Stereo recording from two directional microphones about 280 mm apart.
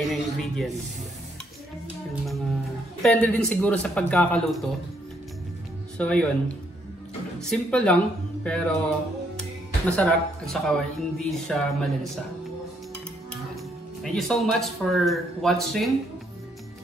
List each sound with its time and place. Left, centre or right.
0.1 s speech: centre
3.0 s speech: centre
5.9 s speech: centre
7.3 s speech: centre
14.0 s speech: centre